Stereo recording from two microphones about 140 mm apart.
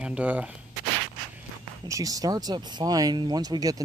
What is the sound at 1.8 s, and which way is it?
Speech, 25° right (ahead or behind).